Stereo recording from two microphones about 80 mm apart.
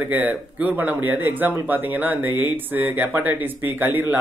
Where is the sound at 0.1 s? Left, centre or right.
Right.